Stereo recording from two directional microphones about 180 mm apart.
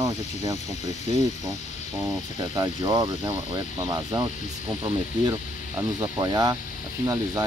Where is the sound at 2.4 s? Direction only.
20° right (ahead or behind).